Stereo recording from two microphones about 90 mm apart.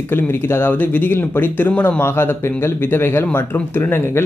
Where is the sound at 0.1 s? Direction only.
25° left (ahead or behind).